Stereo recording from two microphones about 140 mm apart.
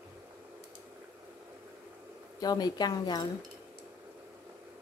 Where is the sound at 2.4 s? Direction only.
30° left (ahead or behind).